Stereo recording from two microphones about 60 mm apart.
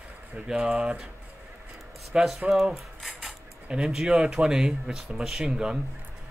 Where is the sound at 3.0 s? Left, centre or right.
Centre.